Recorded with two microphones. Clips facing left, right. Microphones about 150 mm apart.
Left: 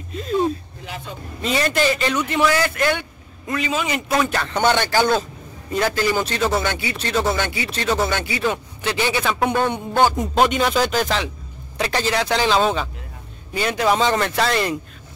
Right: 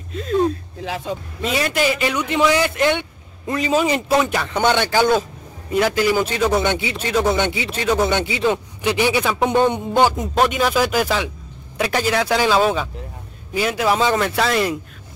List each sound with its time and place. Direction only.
0.1 s speech: centre (ahead or behind)
0.8 s vehicle: 90° right
1.4 s a man's voice: 5° right (ahead or behind); by 3.5 s 20° right (ahead or behind)
3.5 s a man's voice: 35° right (ahead or behind)
4.2 s a man's voice: 10° right (ahead or behind)
10.1 s a man's voice: centre (ahead or behind)